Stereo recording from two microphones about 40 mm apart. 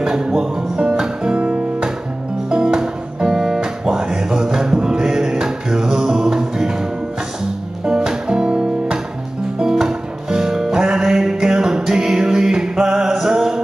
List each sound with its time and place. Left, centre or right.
0.1 s music: centre
1.2 s music: right
2.5 s music: centre